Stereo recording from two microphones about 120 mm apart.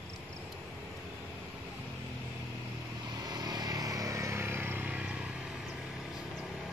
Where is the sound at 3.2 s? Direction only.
35° right (ahead or behind); by 5.3 s 10° right (ahead or behind).